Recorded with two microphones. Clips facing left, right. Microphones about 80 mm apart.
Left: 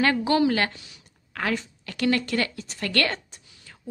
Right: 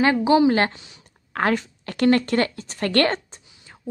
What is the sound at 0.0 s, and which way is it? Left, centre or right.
Speech, centre.